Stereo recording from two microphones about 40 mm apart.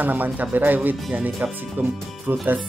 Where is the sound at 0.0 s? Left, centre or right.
Right.